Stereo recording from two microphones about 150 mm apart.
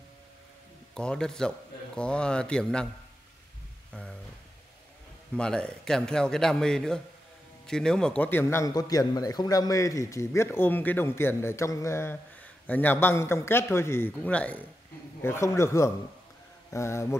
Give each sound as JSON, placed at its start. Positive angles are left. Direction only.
{"t": 0.9, "sound": "a man's voice", "side_deg": 5}
{"t": 3.9, "sound": "a sound", "side_deg": 5}
{"t": 5.3, "sound": "a man's voice", "side_deg": 5}